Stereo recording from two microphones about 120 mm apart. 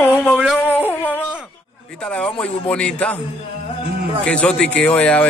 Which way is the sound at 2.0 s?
10° left (ahead or behind).